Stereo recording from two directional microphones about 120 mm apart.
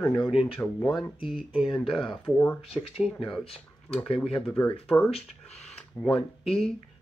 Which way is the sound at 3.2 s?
50° left (ahead or behind).